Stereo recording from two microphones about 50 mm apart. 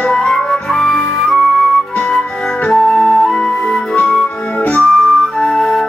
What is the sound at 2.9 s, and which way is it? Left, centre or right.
Flute, centre.